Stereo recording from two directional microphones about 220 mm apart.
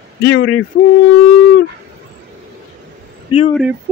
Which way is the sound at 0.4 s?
80° left.